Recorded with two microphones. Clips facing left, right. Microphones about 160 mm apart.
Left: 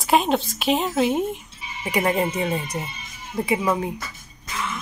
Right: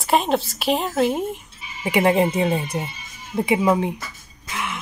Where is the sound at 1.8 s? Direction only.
20° right (ahead or behind).